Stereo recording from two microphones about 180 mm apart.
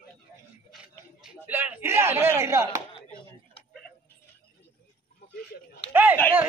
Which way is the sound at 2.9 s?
30° left (ahead or behind).